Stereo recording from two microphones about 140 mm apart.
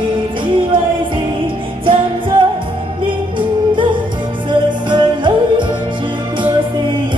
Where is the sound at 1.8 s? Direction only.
35° right (ahead or behind).